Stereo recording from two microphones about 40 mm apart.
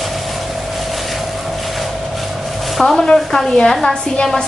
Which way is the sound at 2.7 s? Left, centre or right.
Centre.